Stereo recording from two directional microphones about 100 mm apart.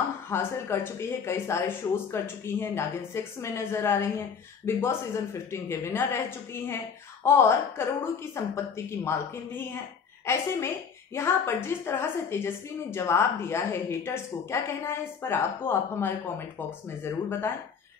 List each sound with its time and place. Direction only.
0.3 s a woman's voice: 25° left (ahead or behind)